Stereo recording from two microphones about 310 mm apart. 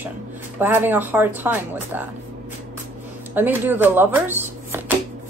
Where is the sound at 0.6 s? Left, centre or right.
Centre.